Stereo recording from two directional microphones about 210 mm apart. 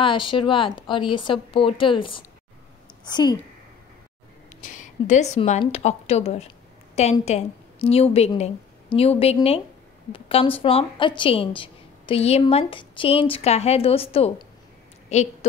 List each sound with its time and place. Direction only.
0.0 s speech: 25° left (ahead or behind)
4.6 s a woman's voice: 35° left (ahead or behind)